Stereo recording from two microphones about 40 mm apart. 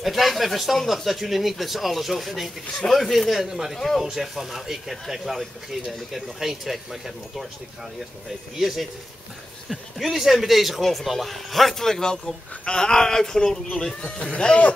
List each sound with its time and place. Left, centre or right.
0.0 s speech: centre
3.7 s speech: centre
4.0 s speech: centre
8.5 s speech: centre; by 14.7 s left